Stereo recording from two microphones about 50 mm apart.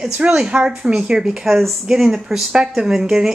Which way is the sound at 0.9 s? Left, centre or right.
Centre.